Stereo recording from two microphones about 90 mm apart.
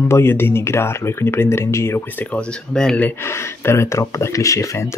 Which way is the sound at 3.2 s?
30° left (ahead or behind).